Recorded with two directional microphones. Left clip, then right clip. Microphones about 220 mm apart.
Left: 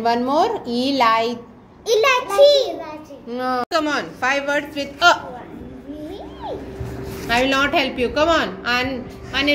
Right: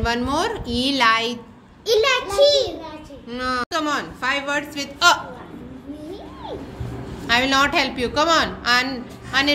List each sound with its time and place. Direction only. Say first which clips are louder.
0.0 s a woman's voice: left 4 dB; centre (ahead or behind)
1.9 s a child's voice: left 2 dB; 20° right (ahead or behind)
3.3 s a woman's voice: left 2 dB; centre (ahead or behind)
7.2 s a woman's voice: even; 5° left (ahead or behind)